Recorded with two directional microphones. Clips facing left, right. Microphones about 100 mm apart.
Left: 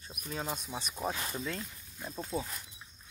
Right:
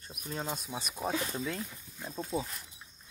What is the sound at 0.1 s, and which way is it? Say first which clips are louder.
Speech: even; 5° left (ahead or behind).